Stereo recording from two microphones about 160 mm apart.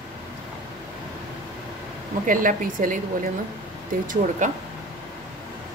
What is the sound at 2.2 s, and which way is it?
Speech, 55° right (ahead or behind).